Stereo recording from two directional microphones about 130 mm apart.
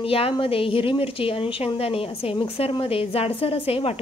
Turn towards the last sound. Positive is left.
turn(degrees=45)  # may be behind; listen again after turning